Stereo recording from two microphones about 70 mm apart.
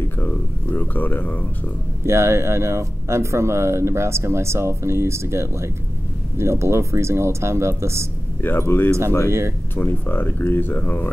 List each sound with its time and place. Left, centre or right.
0.2 s speech: left
2.0 s speech: right
8.4 s speech: left